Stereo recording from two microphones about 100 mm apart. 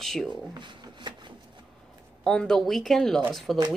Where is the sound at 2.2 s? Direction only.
5° left (ahead or behind).